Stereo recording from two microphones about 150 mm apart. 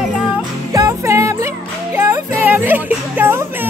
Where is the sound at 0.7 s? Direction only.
20° right (ahead or behind).